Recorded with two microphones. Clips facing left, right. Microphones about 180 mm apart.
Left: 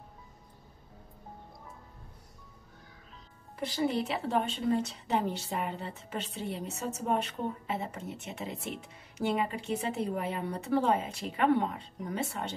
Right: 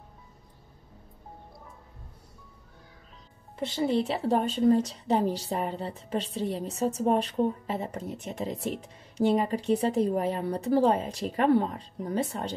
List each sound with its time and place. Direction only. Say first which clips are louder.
3.5 s a woman's voice: right 4 dB; 25° right (ahead or behind)